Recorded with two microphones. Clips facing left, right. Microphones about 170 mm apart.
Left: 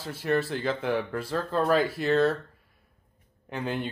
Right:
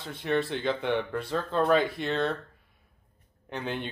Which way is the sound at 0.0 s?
5° left (ahead or behind).